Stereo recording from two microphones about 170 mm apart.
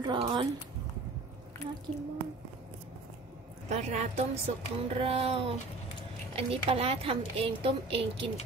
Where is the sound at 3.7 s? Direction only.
40° right (ahead or behind).